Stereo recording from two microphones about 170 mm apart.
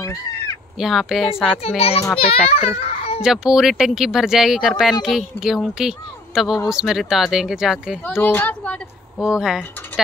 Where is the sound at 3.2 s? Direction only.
5° right (ahead or behind).